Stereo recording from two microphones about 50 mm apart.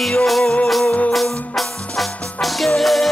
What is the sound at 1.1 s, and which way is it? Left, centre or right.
Music, centre.